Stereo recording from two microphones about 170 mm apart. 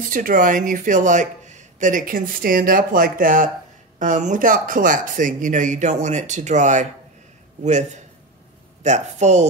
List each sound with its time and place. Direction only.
0.1 s speech: 50° right (ahead or behind)